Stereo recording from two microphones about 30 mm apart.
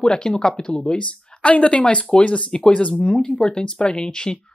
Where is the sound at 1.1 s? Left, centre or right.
Left.